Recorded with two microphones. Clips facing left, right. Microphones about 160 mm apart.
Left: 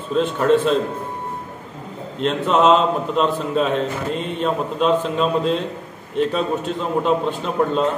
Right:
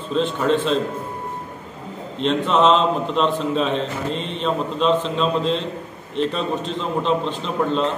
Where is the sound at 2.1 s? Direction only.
5° left (ahead or behind).